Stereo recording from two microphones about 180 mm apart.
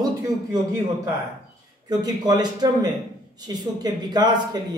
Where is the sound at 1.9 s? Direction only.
20° right (ahead or behind).